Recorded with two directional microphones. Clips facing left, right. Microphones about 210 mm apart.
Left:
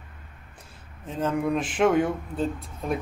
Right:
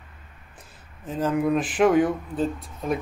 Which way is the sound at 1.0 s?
5° right (ahead or behind).